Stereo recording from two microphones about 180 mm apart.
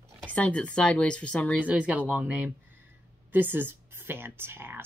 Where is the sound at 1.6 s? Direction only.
5° right (ahead or behind).